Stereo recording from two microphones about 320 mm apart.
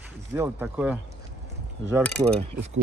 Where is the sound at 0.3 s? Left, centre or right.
Centre.